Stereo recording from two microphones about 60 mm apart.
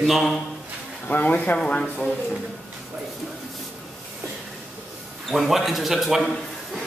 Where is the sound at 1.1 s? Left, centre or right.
Left.